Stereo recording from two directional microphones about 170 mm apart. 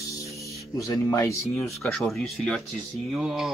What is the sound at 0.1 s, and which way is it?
Music, 20° left (ahead or behind).